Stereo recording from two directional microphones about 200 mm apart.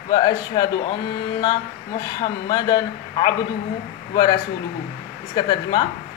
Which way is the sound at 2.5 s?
20° left (ahead or behind).